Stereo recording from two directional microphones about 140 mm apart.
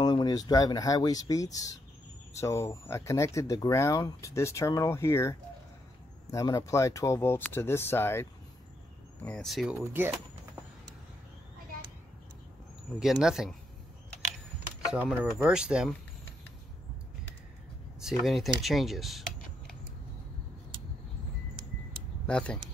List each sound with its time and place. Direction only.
0.0 s speech: 30° left (ahead or behind)
9.2 s speech: 5° left (ahead or behind)
9.8 s speech: 15° right (ahead or behind)
13.0 s speech: 5° right (ahead or behind)
14.9 s speech: 10° right (ahead or behind)
18.2 s speech: centre (ahead or behind)
22.2 s speech: 5° left (ahead or behind)